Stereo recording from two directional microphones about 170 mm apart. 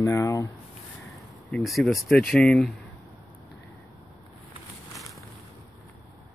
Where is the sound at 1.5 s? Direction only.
Centre (ahead or behind).